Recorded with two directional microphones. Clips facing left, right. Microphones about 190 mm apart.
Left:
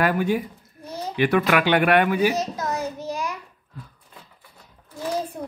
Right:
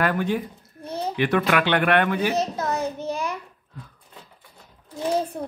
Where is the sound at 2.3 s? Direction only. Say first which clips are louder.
Right 2 dB; 30° right (ahead or behind).